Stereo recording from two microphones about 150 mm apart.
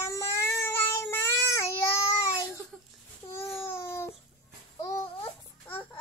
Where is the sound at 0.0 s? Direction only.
20° left (ahead or behind).